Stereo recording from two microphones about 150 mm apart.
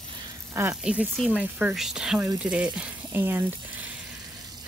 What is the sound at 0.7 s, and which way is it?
Speech, 5° right (ahead or behind).